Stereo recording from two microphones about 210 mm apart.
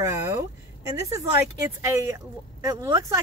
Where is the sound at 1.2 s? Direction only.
15° right (ahead or behind).